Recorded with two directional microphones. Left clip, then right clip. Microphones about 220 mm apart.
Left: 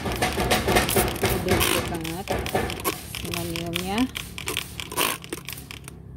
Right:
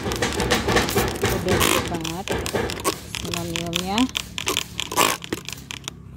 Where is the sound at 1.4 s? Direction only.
20° right (ahead or behind).